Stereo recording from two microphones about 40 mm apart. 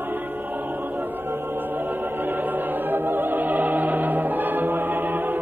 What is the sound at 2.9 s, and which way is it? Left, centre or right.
Music, right.